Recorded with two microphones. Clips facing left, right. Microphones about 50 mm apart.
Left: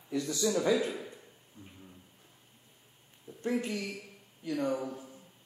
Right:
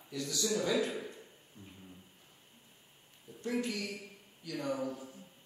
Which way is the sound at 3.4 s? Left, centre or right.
Left.